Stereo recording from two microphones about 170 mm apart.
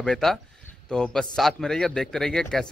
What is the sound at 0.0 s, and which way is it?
A man's voice, 5° left (ahead or behind).